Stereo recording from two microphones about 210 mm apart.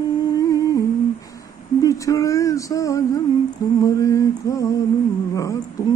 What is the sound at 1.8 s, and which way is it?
Speech, 15° left (ahead or behind).